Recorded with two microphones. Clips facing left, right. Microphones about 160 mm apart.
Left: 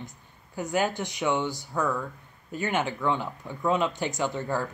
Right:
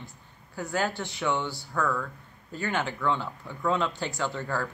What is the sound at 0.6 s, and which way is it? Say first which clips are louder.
Speech: left 3 dB; 15° left (ahead or behind).